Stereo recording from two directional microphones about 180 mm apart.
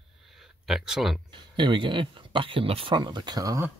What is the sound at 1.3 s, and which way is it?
Speech, 25° right (ahead or behind).